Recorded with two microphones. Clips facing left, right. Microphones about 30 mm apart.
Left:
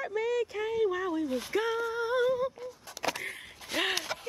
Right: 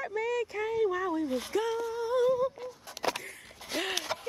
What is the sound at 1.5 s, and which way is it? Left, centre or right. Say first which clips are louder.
Humming: left 1 dB; left.